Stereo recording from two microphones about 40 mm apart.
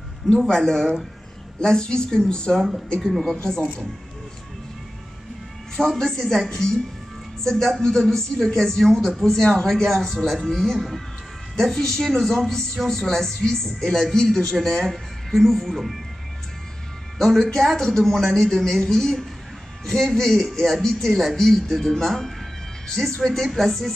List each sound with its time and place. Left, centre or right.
0.3 s a woman's voice: centre
5.8 s speech: centre
17.2 s speech: centre